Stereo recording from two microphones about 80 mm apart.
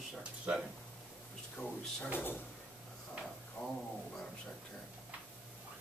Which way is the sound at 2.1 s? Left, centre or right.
Left.